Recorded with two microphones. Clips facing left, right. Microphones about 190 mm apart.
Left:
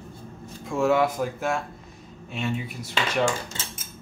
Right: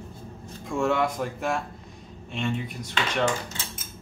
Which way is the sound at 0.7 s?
5° left (ahead or behind).